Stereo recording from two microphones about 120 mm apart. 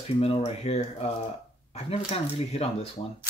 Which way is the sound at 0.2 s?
60° left (ahead or behind).